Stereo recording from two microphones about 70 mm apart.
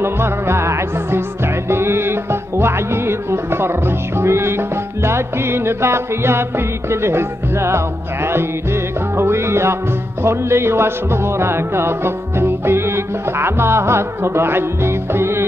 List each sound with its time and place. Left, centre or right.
0.0 s music: right